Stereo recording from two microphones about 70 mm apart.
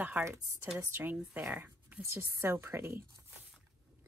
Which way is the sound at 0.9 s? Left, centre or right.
Right.